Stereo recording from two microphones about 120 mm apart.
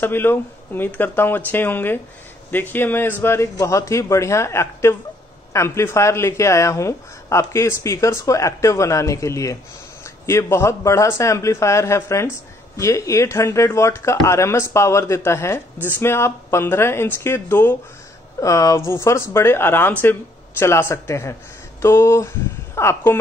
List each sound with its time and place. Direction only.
0.0 s speech: 15° left (ahead or behind)